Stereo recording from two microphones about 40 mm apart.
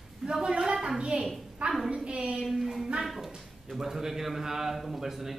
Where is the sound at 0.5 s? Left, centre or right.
Right.